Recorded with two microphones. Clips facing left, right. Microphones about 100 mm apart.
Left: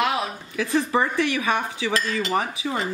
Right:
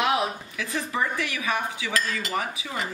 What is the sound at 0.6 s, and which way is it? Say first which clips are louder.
Dishes: left 7 dB; 35° left (ahead or behind).